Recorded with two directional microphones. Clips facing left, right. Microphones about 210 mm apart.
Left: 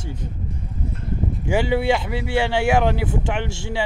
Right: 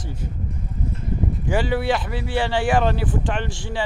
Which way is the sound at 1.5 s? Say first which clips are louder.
Left 2 dB; 15° left (ahead or behind).